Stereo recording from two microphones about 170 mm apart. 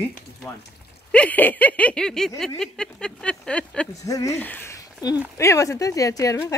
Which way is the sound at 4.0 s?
20° left (ahead or behind).